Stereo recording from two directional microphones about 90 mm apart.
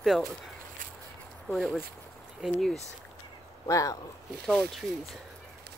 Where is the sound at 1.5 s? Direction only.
Centre (ahead or behind).